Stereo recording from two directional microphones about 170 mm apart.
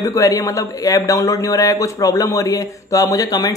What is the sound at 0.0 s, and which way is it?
Speech, 20° left (ahead or behind).